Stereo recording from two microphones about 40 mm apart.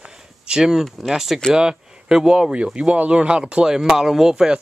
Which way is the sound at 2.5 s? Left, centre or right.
Right.